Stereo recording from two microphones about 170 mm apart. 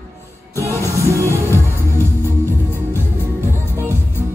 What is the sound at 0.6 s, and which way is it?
Music, 15° right (ahead or behind).